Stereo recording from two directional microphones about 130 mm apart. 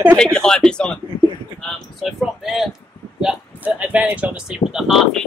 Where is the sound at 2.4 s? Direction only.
5° right (ahead or behind).